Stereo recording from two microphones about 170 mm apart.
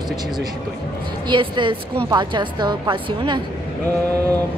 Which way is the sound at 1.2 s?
25° right (ahead or behind).